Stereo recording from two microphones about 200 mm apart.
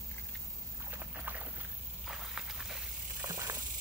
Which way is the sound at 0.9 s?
10° right (ahead or behind).